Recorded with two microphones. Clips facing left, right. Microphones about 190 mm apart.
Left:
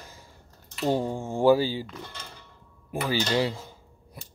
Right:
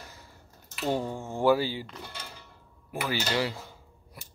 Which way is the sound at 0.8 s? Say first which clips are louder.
Left 4 dB; 15° left (ahead or behind).